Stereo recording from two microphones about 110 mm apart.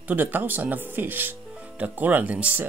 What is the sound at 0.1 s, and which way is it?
Speech, 15° right (ahead or behind).